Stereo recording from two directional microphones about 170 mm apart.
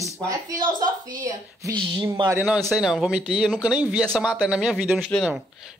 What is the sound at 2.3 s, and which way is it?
Speech, 15° right (ahead or behind).